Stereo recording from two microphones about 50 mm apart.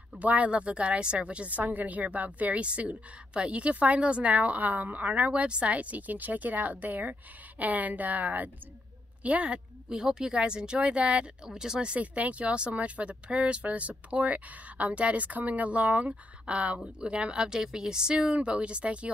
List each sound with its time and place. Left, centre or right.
0.2 s a woman's voice: right
9.8 s speech: centre